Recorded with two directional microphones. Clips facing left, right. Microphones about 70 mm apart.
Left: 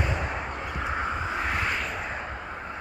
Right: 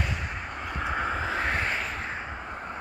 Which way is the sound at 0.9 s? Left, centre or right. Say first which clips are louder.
Right 2 dB; right.